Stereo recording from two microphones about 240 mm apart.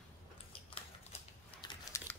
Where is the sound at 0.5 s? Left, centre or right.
Left.